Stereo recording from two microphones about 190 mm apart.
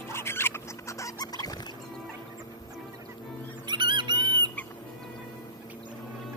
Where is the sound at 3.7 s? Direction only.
25° right (ahead or behind).